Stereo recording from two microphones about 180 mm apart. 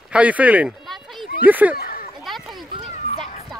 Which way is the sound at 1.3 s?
10° right (ahead or behind).